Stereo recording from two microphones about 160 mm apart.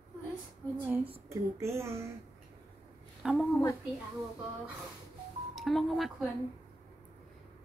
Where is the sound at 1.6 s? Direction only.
15° right (ahead or behind).